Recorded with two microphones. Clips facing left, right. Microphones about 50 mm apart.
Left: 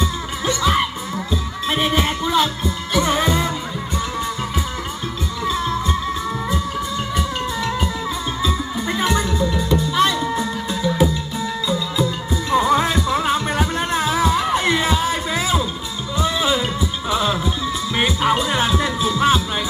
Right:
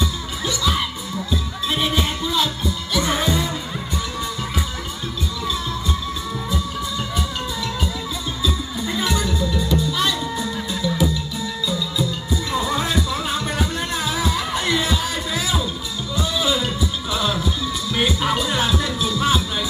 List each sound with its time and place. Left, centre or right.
0.5 s music: left
2.0 s music: left
3.0 s music: centre
3.3 s music: left
5.5 s music: left
7.2 s music: left